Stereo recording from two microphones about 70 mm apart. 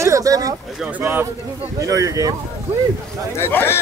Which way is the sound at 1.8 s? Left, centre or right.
Right.